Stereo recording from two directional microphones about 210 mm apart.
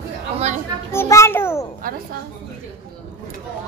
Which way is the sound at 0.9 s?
15° left (ahead or behind).